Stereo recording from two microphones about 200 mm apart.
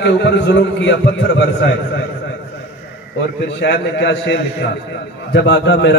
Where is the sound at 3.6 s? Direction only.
60° left (ahead or behind).